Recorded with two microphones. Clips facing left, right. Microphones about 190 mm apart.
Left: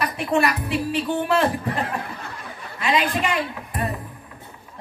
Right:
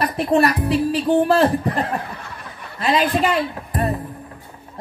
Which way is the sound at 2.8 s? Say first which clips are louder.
Right 4 dB; 40° right (ahead or behind).